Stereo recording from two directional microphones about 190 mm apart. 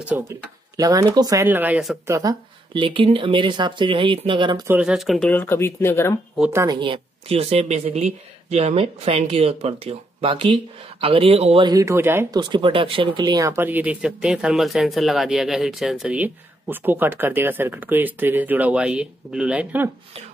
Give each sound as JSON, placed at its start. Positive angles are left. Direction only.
{"t": 0.1, "sound": "speech", "side_deg": -10}
{"t": 2.0, "sound": "speech", "side_deg": -20}
{"t": 4.6, "sound": "speech", "side_deg": -5}
{"t": 5.3, "sound": "speech", "side_deg": 10}
{"t": 6.3, "sound": "a woman's voice", "side_deg": -5}
{"t": 6.6, "sound": "a woman's voice", "side_deg": -20}
{"t": 12.4, "sound": "speech", "side_deg": -25}